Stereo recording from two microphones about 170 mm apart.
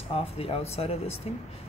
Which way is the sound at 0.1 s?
35° left (ahead or behind).